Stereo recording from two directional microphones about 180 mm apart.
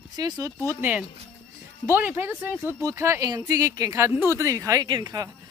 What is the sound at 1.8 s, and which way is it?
Speech, 10° right (ahead or behind).